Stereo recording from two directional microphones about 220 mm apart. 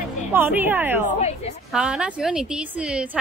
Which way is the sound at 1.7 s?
5° right (ahead or behind).